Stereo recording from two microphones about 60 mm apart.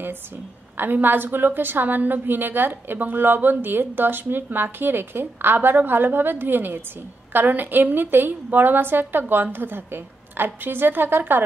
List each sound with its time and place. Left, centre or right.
0.7 s a woman's voice: right